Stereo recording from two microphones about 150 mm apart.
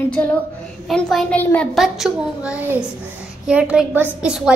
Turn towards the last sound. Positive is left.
turn(degrees=-5)  # may be behind; listen again after turning